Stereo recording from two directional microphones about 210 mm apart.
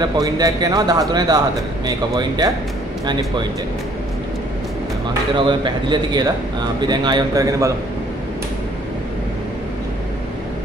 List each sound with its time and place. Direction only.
0.0 s a man's voice: 15° right (ahead or behind)
5.5 s a man's voice: 20° right (ahead or behind)